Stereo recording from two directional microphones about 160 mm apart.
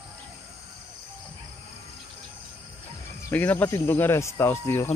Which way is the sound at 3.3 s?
10° left (ahead or behind).